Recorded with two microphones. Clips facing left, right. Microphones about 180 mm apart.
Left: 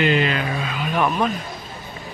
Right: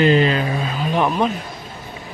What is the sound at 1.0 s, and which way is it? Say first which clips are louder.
Speech: right 1 dB; 20° right (ahead or behind).